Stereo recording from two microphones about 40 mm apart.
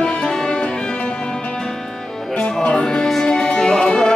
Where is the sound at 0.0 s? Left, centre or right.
Left.